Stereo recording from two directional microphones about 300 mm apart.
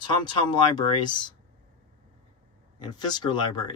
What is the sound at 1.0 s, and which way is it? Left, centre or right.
Speech, centre.